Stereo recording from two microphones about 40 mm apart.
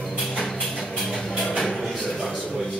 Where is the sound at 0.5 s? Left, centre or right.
Centre.